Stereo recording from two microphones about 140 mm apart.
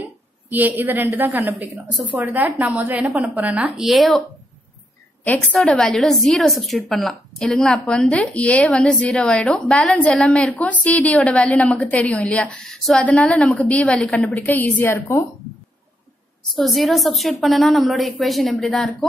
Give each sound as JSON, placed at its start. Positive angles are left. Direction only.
{"t": 0.5, "sound": "a woman's voice", "side_deg": -10}
{"t": 5.2, "sound": "a woman's voice", "side_deg": 10}
{"t": 16.5, "sound": "a woman's voice", "side_deg": 0}